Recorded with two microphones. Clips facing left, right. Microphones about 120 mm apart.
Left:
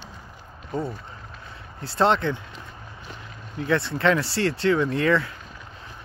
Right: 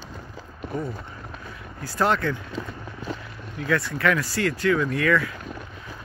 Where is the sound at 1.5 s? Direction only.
25° left (ahead or behind).